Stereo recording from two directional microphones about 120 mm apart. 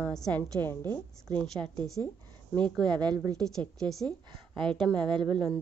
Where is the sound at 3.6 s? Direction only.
5° left (ahead or behind).